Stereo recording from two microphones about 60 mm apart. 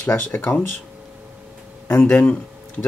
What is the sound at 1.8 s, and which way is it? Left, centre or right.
Speech, left.